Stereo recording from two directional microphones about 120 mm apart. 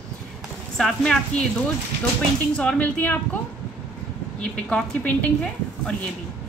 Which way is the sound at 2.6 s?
10° left (ahead or behind).